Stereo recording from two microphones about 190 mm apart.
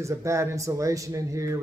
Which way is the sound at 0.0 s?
15° right (ahead or behind).